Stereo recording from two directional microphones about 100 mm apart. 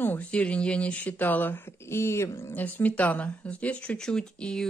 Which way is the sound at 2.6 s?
15° left (ahead or behind).